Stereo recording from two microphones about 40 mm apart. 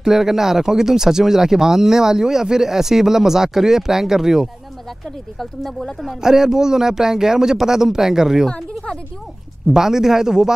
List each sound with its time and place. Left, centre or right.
0.0 s speech: centre
5.4 s speech: centre
6.0 s speech: centre
8.5 s speech: left
9.8 s speech: centre